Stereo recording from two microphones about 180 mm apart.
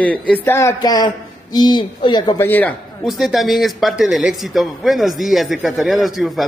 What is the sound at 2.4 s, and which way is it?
Speech, 10° left (ahead or behind).